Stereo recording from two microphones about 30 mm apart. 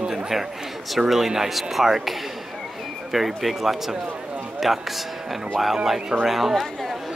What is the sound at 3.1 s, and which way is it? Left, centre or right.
Speech, centre.